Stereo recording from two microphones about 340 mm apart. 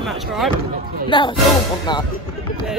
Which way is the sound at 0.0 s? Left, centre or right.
Centre.